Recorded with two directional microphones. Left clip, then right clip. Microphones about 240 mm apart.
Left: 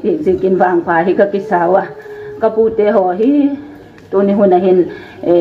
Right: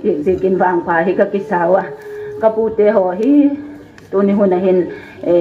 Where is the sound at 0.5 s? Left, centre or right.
Left.